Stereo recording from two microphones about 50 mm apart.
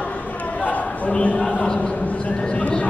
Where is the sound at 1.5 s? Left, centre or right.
Left.